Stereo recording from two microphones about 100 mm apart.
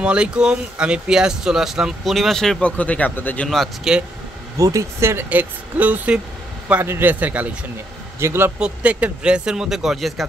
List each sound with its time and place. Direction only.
0.0 s speech: 10° right (ahead or behind)
2.8 s speech: 15° left (ahead or behind)
3.4 s speech: centre (ahead or behind)
4.6 s a man's voice: 35° right (ahead or behind)
8.5 s speech: 10° right (ahead or behind)